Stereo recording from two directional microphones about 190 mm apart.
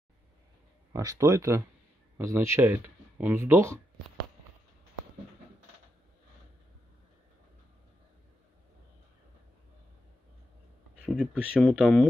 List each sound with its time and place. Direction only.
0.9 s speech: 15° right (ahead or behind)
11.0 s speech: 5° right (ahead or behind)